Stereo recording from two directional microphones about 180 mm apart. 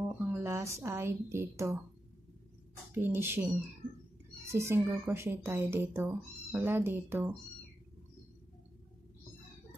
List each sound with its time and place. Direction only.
0.3 s speech: 15° right (ahead or behind)
2.9 s speech: 10° right (ahead or behind)